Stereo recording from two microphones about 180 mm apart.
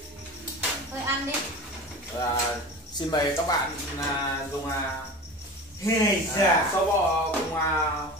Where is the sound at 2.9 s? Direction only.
20° left (ahead or behind).